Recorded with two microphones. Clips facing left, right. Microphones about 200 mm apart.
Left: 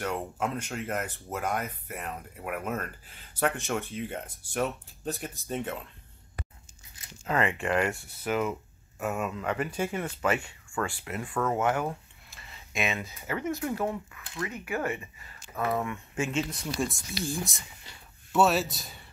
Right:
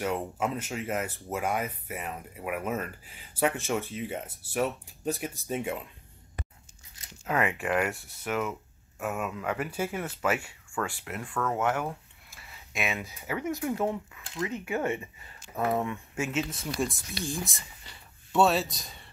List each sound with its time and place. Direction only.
0.0 s speech: 5° right (ahead or behind)
7.2 s speech: 10° right (ahead or behind)
16.2 s speech: 5° right (ahead or behind)